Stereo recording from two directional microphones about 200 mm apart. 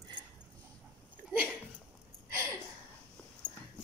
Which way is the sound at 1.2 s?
10° right (ahead or behind).